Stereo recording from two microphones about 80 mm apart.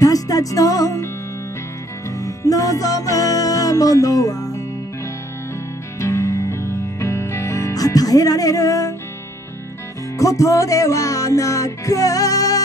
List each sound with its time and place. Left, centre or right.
0.0 s music: left
2.0 s music: left
5.9 s music: left
10.1 s music: left